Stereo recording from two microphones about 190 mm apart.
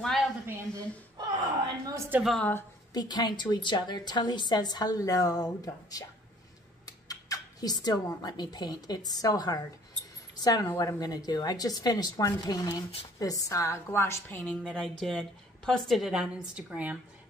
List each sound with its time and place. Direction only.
0.5 s a woman's voice: 15° right (ahead or behind)
2.0 s a sound: 10° right (ahead or behind)
2.3 s a woman's voice: 10° left (ahead or behind)
2.9 s a woman's voice: 20° left (ahead or behind); by 17.0 s 5° right (ahead or behind)